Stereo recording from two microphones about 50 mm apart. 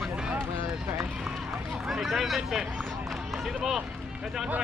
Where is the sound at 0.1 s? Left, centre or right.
Right.